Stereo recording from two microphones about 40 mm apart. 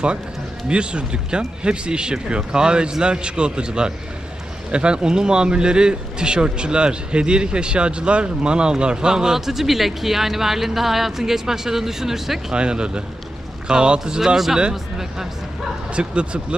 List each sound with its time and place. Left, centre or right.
0.7 s a man's voice: right; by 12.5 s centre
12.5 s a man's voice: right
15.9 s a man's voice: right